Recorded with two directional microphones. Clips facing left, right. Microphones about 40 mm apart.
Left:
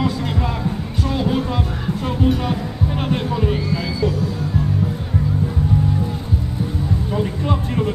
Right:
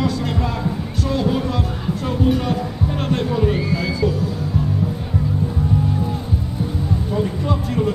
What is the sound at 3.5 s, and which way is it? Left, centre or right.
Speech, centre.